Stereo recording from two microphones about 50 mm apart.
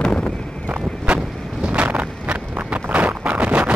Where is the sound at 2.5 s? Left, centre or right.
Right.